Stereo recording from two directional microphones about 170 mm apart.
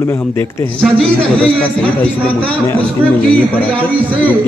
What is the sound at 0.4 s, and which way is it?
A man's voice, 15° left (ahead or behind).